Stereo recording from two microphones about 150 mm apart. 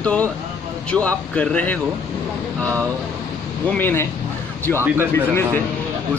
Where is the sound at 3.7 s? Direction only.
15° left (ahead or behind).